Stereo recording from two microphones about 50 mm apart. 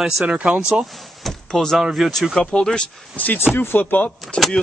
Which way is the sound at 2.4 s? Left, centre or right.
Centre.